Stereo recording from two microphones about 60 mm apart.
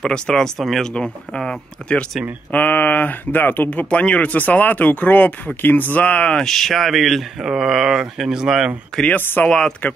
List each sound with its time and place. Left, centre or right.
0.0 s speech: centre
0.9 s speech: centre
2.5 s speech: left
3.9 s speech: left
6.4 s speech: centre
9.5 s speech: centre